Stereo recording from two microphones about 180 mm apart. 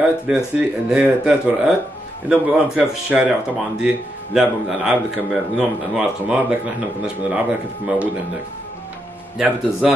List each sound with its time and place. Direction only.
0.3 s a man's voice: 5° right (ahead or behind)
9.4 s speech: 5° right (ahead or behind)